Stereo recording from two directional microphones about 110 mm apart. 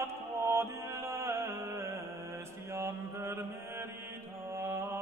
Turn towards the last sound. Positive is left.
turn(degrees=-25)  # may be behind; listen again after turning